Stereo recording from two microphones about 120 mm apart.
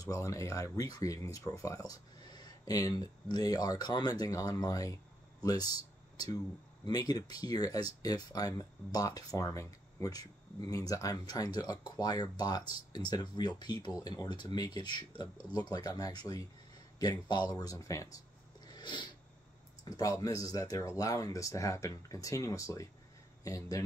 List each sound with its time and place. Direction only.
0.0 s speech: 25° left (ahead or behind)
18.7 s a sound: 40° left (ahead or behind)
19.8 s speech: 30° left (ahead or behind)